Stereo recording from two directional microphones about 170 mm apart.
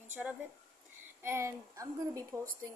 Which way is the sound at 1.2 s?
15° right (ahead or behind).